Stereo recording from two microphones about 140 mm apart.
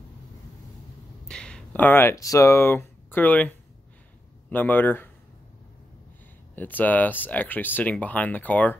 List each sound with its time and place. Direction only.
1.2 s speech: 5° left (ahead or behind)
6.5 s speech: 15° left (ahead or behind)